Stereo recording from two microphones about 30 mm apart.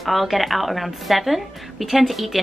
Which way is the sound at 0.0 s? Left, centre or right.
Centre.